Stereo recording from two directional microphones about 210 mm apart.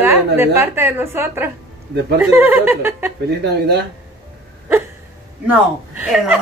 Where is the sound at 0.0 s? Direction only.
10° right (ahead or behind).